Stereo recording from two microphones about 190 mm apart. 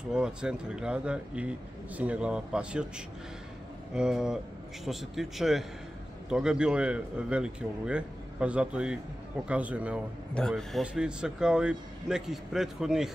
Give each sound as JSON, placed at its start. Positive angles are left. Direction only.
{"t": 0.1, "sound": "a man's voice", "side_deg": -5}
{"t": 3.9, "sound": "a man's voice", "side_deg": -5}